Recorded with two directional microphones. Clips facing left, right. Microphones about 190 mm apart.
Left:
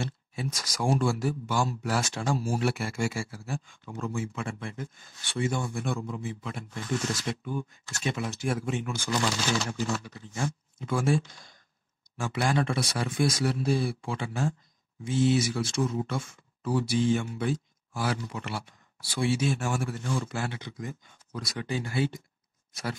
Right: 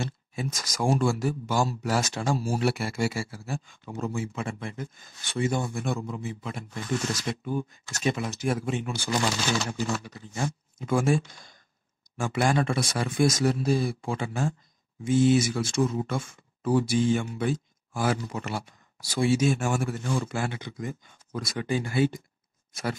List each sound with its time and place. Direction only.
0.0 s speech: 45° right (ahead or behind)
10.8 s speech: 45° right (ahead or behind)
12.2 s speech: 50° right (ahead or behind)